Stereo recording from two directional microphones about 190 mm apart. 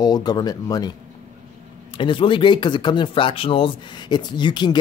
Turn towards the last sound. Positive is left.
turn(degrees=25)  # may be behind; listen again after turning